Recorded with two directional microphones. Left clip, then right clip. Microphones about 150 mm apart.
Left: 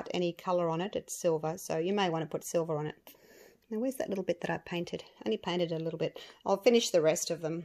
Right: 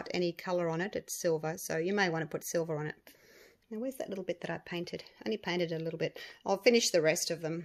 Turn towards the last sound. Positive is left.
turn(degrees=10)  # may be behind; listen again after turning